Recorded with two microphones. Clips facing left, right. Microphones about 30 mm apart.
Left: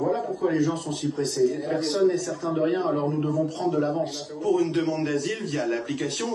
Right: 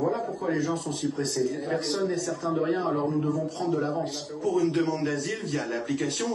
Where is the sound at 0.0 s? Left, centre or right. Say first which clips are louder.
Left 3 dB; centre.